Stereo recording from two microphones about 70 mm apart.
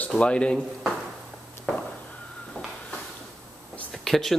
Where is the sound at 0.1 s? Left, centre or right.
Centre.